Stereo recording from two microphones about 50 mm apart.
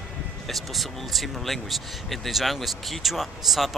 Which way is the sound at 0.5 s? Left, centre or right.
Centre.